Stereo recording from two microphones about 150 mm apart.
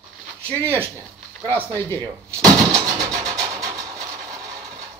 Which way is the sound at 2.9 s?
25° right (ahead or behind).